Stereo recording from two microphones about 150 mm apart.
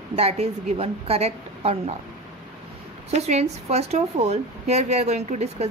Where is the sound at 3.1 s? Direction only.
45° right (ahead or behind).